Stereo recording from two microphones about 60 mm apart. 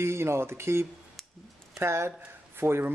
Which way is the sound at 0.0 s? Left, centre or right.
Right.